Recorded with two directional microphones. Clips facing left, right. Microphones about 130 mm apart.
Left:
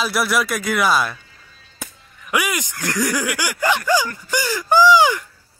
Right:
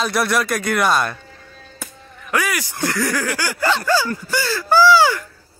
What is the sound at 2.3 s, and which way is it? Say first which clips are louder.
Speech: even; 15° left (ahead or behind).